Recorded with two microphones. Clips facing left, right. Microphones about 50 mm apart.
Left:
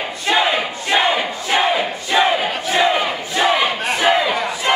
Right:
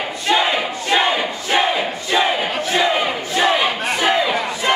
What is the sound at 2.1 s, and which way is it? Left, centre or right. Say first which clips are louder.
Battle cry: left 2 dB; centre.